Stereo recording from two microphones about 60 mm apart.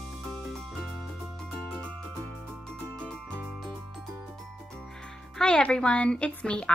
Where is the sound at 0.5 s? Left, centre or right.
Centre.